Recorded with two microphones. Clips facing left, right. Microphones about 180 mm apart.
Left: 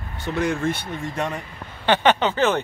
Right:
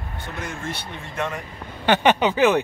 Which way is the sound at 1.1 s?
35° left (ahead or behind).